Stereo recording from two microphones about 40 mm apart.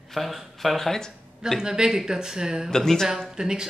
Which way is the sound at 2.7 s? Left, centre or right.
Centre.